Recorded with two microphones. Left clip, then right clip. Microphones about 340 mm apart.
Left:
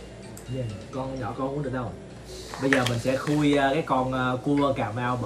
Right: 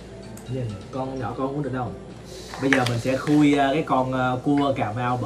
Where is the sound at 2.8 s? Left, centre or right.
Centre.